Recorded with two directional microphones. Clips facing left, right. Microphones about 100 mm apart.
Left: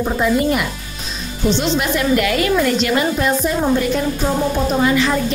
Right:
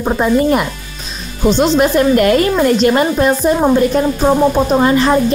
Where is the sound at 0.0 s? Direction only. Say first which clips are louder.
Right 4 dB; 40° right (ahead or behind).